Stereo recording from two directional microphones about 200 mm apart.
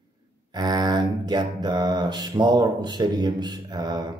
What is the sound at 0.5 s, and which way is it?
Mantra, 20° right (ahead or behind).